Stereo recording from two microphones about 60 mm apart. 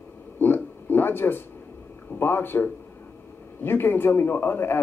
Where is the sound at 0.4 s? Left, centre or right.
Left.